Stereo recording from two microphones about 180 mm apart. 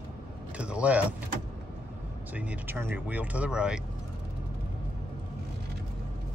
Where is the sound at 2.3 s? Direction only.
10° right (ahead or behind).